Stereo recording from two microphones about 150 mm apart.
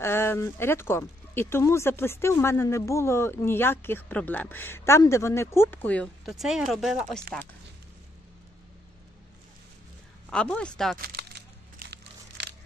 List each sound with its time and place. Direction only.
0.0 s speech: 15° left (ahead or behind)
6.2 s speech: centre (ahead or behind)
10.3 s speech: 5° left (ahead or behind)
11.0 s a sound: 90° right